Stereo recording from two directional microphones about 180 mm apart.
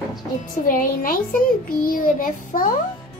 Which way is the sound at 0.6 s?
50° left (ahead or behind).